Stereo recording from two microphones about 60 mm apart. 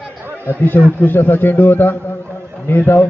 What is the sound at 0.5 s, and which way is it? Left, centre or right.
A man's voice, left.